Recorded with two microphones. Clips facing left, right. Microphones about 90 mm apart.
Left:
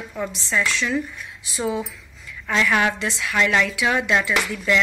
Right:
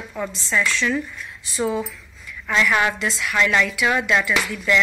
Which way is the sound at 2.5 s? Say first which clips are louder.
Even; 35° left (ahead or behind).